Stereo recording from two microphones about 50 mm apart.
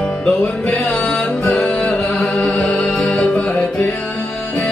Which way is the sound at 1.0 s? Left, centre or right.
Centre.